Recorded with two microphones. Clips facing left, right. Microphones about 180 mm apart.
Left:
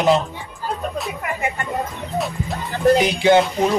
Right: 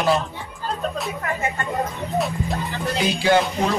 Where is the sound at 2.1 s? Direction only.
Centre (ahead or behind).